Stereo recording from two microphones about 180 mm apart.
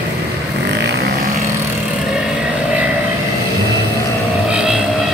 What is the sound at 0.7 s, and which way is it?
Vehicle, 70° right (ahead or behind).